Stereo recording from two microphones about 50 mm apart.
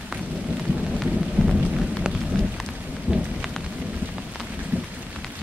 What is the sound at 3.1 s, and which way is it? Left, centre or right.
Thunder, right.